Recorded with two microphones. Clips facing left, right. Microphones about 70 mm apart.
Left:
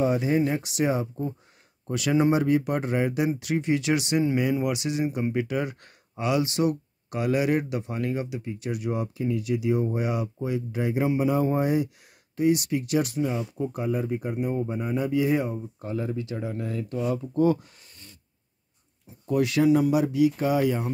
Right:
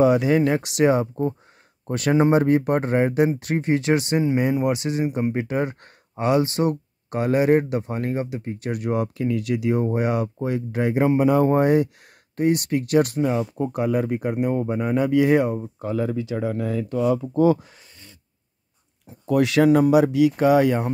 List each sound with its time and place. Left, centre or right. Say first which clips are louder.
0.0 s speech: right 6 dB; right
1.9 s speech: right 4 dB; right
19.0 s speech: right 4 dB; right